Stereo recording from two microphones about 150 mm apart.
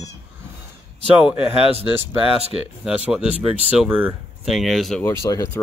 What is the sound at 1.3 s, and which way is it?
Speech, 40° left (ahead or behind).